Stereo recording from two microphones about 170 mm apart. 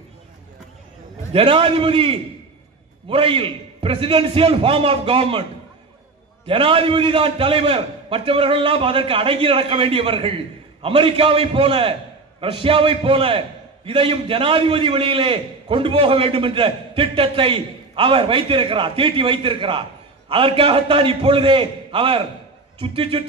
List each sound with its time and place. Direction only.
1.3 s a man's voice: 30° right (ahead or behind)
6.4 s a man's voice: 30° right (ahead or behind)